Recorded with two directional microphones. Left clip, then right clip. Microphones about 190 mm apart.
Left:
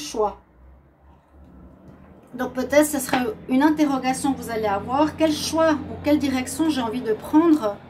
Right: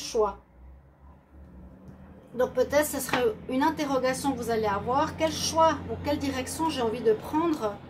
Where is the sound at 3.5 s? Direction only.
45° left (ahead or behind).